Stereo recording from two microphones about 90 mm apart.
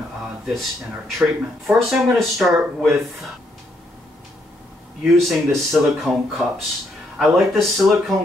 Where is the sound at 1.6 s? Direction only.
5° right (ahead or behind).